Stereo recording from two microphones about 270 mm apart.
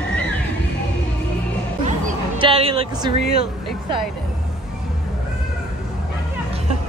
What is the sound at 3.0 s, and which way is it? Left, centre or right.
Speech, right.